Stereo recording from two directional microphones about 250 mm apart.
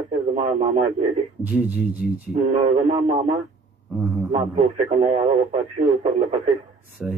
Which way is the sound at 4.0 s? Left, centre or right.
Centre.